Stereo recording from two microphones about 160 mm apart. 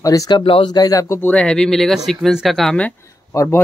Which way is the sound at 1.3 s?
5° left (ahead or behind).